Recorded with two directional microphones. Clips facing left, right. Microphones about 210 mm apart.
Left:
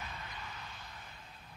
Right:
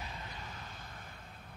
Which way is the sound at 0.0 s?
30° right (ahead or behind).